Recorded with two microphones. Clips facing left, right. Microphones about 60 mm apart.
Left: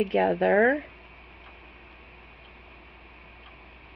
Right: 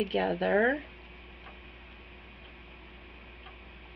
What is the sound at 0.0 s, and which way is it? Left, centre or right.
Speech, left.